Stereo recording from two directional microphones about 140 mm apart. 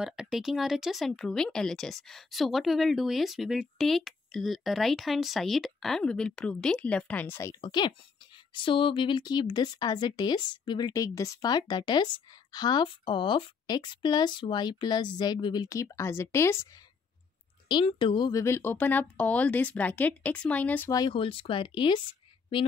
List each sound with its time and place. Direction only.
0.0 s speech: 5° right (ahead or behind); by 7.5 s 15° left (ahead or behind)
7.6 s a woman's voice: 35° left (ahead or behind)
17.6 s a woman's voice: 35° left (ahead or behind)
18.4 s speech: 15° left (ahead or behind)
20.9 s a woman's voice: 35° left (ahead or behind)